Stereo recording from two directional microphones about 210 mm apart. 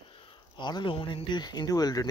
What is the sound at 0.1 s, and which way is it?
Speech, 25° left (ahead or behind).